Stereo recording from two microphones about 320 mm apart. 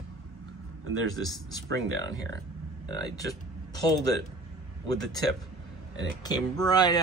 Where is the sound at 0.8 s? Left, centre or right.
Right.